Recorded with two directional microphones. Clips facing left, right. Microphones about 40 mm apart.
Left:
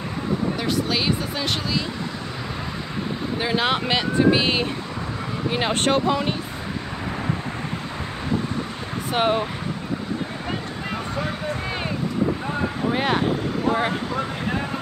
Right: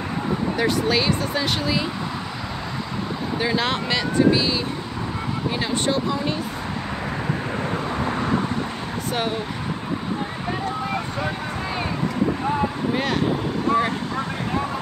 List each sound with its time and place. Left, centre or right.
0.6 s speech: centre
3.3 s speech: centre
3.8 s speech: left
5.7 s speech: left
9.1 s speech: left
12.9 s speech: centre